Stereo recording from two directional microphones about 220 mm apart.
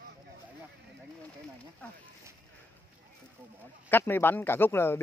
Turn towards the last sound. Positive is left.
turn(degrees=10)  # may be behind; listen again after turning